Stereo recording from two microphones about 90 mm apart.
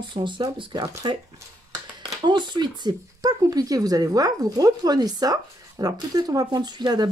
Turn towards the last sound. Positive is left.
turn(degrees=-50)  # may be behind; listen again after turning